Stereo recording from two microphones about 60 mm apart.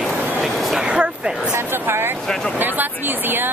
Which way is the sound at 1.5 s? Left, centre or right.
Right.